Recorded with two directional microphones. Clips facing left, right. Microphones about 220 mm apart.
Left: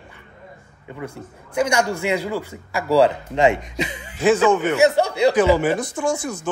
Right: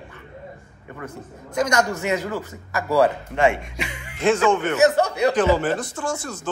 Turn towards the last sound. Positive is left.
turn(degrees=15)  # may be behind; listen again after turning